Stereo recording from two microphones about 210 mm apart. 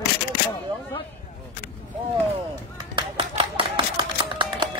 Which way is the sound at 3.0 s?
25° right (ahead or behind).